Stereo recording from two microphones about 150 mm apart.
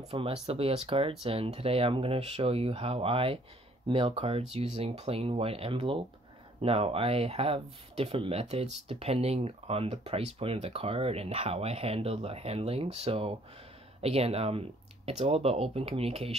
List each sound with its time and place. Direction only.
0.1 s speech: 40° right (ahead or behind)